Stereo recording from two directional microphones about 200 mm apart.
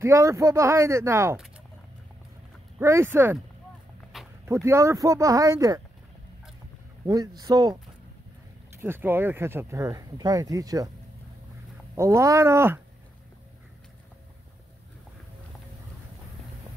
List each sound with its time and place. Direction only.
0.0 s speech: 15° right (ahead or behind)
2.8 s speech: 15° right (ahead or behind)
4.1 s a sound: centre (ahead or behind)
4.5 s speech: 15° right (ahead or behind)
7.1 s speech: 20° right (ahead or behind)
8.8 s speech: 10° right (ahead or behind)
11.9 s speech: 15° right (ahead or behind)